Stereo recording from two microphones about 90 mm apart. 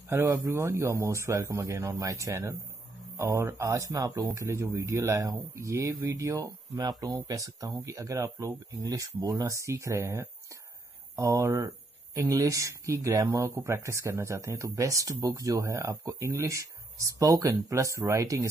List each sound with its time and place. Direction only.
0.1 s speech: 30° right (ahead or behind)
11.3 s speech: 35° right (ahead or behind)